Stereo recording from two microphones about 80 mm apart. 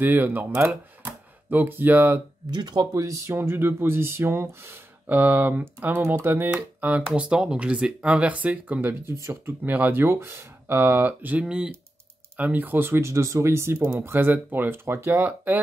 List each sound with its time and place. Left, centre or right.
0.0 s speech: right
2.5 s speech: right
2.9 s speech: right
3.3 s speech: right
9.1 s speech: right
11.4 s speech: centre
12.4 s speech: right